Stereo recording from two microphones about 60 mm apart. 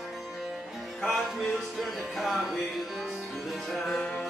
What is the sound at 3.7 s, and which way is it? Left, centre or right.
Music, centre.